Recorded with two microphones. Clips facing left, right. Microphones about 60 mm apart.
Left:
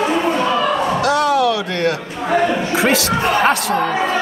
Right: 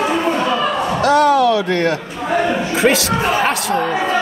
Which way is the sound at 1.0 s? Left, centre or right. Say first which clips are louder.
Right 5 dB; right.